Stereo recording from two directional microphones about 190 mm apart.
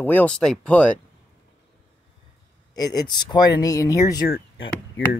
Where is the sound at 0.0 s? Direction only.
10° left (ahead or behind).